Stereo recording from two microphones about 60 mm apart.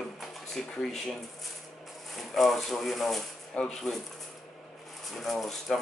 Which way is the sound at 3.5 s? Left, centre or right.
Centre.